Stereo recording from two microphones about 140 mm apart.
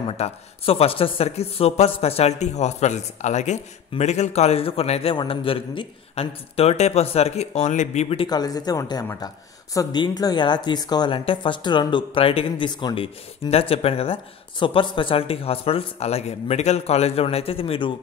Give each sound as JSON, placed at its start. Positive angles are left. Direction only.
{"t": 0.2, "sound": "speech", "side_deg": 45}
{"t": 8.3, "sound": "speech", "side_deg": 30}
{"t": 9.8, "sound": "speech", "side_deg": 30}